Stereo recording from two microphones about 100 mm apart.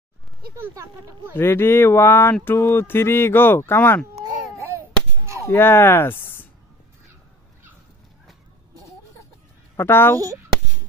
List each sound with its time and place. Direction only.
1.3 s speech: 25° left (ahead or behind)
5.5 s speech: 25° left (ahead or behind)
9.8 s speech: 25° left (ahead or behind)